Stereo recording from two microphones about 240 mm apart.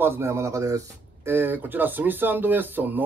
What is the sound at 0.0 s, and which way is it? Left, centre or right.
Speech, centre.